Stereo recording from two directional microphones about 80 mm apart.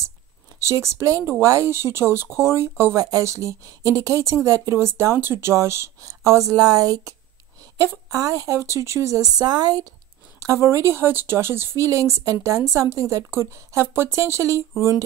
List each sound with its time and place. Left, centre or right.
0.6 s speech: right
3.0 s speech: right
10.4 s speech: right